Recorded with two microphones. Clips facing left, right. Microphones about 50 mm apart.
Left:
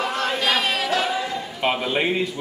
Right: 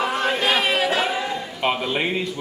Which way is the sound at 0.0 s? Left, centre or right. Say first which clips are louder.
Right 2 dB; centre.